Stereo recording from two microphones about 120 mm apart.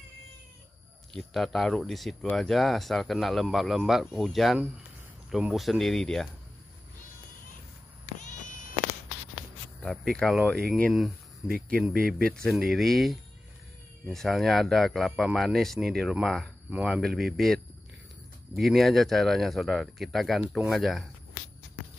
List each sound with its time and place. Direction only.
1.1 s speech: centre (ahead or behind)
8.2 s cat: 90° left
9.8 s speech: 5° left (ahead or behind)
18.6 s speech: centre (ahead or behind)